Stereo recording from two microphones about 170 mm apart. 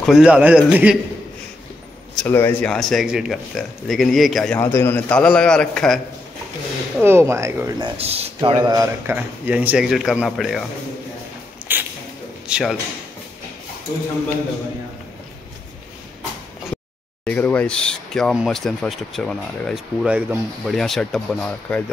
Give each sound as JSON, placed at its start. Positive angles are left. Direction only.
{"t": 0.0, "sound": "a man's voice", "side_deg": 0}
{"t": 2.1, "sound": "speech", "side_deg": 10}
{"t": 4.6, "sound": "a man's voice", "side_deg": 15}
{"t": 7.0, "sound": "a man's voice", "side_deg": -15}
{"t": 8.0, "sound": "speech", "side_deg": -35}
{"t": 8.5, "sound": "a man's voice", "side_deg": -20}
{"t": 11.7, "sound": "rodents", "side_deg": -10}
{"t": 12.4, "sound": "speech", "side_deg": -5}
{"t": 17.2, "sound": "speech", "side_deg": 10}